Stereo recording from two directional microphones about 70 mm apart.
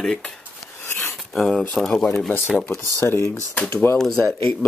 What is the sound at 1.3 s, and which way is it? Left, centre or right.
Speech, centre.